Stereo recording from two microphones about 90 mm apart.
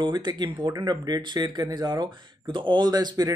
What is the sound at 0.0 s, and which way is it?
Speech, 55° right (ahead or behind).